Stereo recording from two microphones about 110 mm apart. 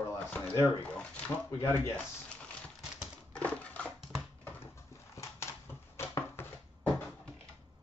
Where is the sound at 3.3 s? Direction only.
15° left (ahead or behind).